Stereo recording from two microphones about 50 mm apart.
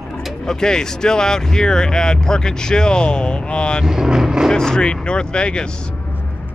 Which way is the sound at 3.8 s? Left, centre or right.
Centre.